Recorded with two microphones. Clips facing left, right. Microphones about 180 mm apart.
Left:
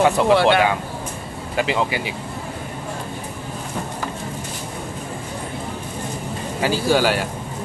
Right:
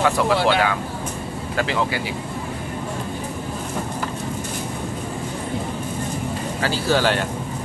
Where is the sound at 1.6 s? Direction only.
15° left (ahead or behind).